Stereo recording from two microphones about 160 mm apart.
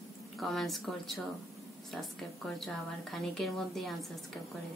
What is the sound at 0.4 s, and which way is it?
A woman's voice, centre (ahead or behind).